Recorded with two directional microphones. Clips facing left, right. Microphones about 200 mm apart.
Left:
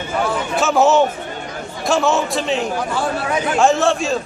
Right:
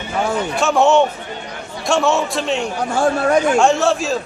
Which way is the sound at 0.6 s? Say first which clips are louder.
Even; centre (ahead or behind).